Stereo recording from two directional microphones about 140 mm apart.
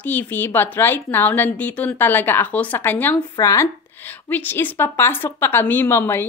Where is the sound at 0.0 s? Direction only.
15° left (ahead or behind).